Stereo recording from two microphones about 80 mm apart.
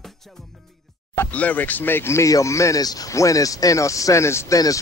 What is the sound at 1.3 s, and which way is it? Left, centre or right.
Speech, centre.